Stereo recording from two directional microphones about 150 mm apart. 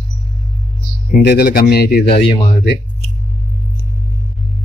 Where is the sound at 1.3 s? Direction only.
90° left.